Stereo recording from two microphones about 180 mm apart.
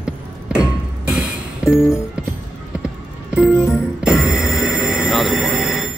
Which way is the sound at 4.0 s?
Centre (ahead or behind).